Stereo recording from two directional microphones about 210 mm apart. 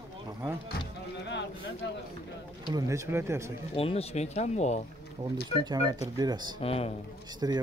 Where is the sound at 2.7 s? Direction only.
15° right (ahead or behind).